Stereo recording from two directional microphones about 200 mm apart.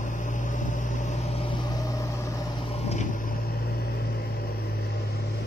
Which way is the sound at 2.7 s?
35° left (ahead or behind).